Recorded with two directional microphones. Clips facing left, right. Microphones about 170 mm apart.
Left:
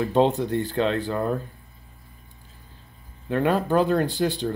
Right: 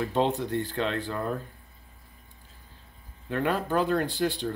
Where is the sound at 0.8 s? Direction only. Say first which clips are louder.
Left 6 dB; 40° left (ahead or behind).